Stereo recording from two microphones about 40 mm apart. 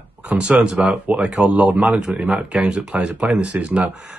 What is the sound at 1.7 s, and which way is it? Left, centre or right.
Speech, right.